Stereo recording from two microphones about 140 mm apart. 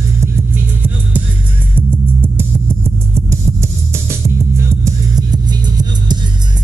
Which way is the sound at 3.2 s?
20° right (ahead or behind).